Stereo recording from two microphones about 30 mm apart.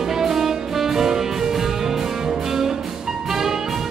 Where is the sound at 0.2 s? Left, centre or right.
Centre.